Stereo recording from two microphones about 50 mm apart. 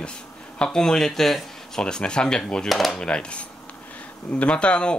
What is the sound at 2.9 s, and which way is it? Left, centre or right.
Speech, left.